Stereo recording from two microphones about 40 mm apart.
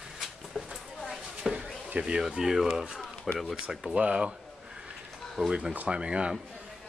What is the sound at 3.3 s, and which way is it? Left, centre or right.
Speech, centre.